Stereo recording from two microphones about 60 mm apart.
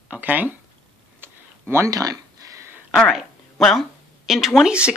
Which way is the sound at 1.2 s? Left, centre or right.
Right.